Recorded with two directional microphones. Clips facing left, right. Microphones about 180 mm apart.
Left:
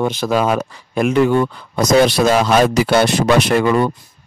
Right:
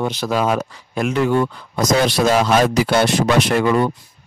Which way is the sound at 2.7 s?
65° left (ahead or behind).